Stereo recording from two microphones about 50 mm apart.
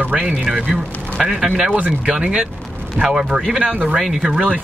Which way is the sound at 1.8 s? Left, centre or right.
Right.